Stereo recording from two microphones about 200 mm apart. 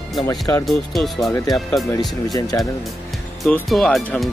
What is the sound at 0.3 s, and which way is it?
Speech, 20° left (ahead or behind).